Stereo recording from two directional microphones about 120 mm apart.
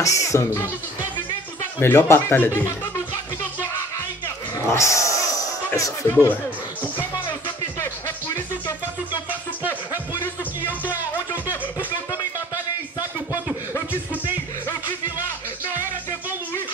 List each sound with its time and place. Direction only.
0.0 s speech: 25° left (ahead or behind)
1.8 s speech: 20° left (ahead or behind)
4.7 s a sound: 25° left (ahead or behind)
5.8 s speech: 25° left (ahead or behind)